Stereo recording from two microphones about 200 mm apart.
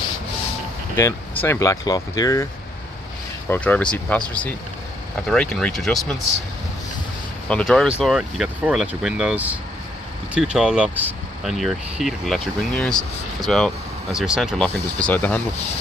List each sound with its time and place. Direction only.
0.9 s speech: 15° left (ahead or behind)
3.4 s speech: 10° left (ahead or behind)
7.4 s speech: 5° left (ahead or behind)